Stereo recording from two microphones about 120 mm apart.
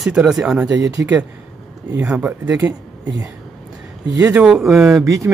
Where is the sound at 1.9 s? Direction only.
10° right (ahead or behind).